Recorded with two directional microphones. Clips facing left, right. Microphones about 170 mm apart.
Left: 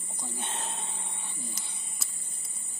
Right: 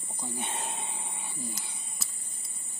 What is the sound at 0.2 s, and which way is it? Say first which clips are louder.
Livestock: right 2 dB; 10° right (ahead or behind).